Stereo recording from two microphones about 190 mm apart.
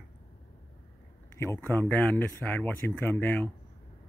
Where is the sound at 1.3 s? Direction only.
15° left (ahead or behind).